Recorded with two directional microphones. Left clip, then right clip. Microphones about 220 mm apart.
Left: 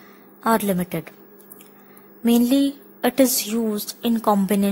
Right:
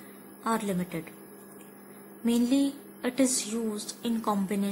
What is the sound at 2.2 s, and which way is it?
A woman's voice, 40° left (ahead or behind).